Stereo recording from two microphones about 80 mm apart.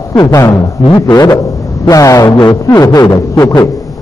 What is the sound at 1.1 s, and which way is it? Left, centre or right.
Speech, left.